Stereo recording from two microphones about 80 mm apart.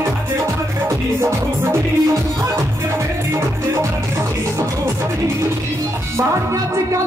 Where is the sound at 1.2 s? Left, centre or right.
Right.